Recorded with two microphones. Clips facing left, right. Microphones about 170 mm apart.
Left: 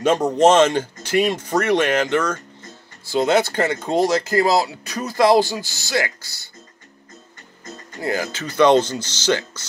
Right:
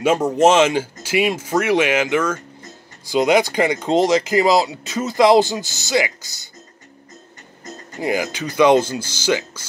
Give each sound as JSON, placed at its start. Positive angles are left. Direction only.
{"t": 0.0, "sound": "speech", "side_deg": -10}
{"t": 8.0, "sound": "speech", "side_deg": -15}